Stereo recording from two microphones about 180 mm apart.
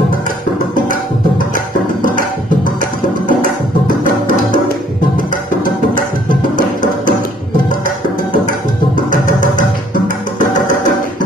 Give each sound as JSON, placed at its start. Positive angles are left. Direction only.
{"t": 2.0, "sound": "music", "side_deg": 50}
{"t": 6.5, "sound": "music", "side_deg": 45}
{"t": 9.4, "sound": "music", "side_deg": 45}